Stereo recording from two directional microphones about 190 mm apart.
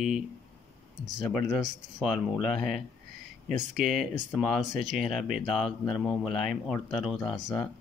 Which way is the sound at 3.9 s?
Centre (ahead or behind).